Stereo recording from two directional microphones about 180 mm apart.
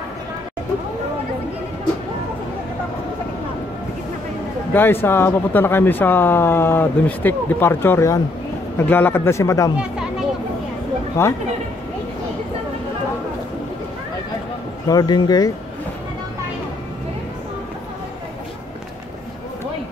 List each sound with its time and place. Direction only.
4.7 s speech: 10° left (ahead or behind)
11.2 s speech: 15° left (ahead or behind)
14.9 s speech: 20° left (ahead or behind)